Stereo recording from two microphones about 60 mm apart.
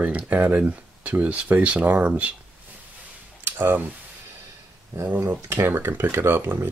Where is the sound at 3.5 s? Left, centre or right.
Right.